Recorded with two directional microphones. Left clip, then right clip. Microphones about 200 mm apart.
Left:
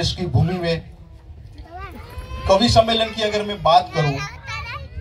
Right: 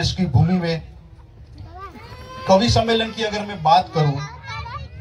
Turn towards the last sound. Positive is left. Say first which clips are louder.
# left 2 dB
turn(degrees=20)  # may be behind; listen again after turning